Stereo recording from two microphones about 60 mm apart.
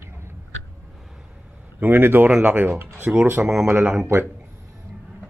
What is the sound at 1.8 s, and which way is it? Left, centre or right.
Speech, right.